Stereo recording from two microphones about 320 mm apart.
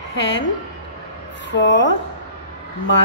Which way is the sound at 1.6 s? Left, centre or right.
Left.